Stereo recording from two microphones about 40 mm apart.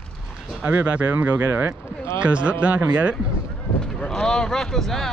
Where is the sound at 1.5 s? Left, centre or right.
Right.